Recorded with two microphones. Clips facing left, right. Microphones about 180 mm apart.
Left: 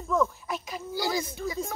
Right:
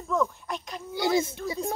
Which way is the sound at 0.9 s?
25° right (ahead or behind).